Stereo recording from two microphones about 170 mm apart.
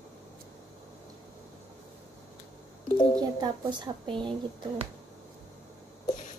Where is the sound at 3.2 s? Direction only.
25° right (ahead or behind).